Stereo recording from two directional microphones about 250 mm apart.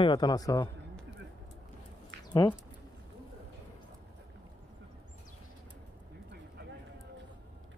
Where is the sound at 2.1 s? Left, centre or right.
Right.